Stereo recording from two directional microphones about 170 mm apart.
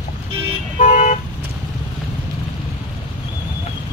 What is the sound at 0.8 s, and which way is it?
Vehicle, 40° left (ahead or behind).